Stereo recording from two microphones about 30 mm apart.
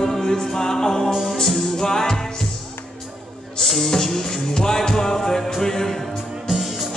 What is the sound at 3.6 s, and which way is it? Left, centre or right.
Music, centre.